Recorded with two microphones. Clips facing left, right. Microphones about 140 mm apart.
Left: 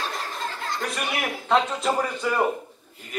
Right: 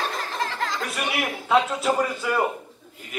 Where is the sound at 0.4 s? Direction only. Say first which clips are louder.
Right 6 dB; 90° right.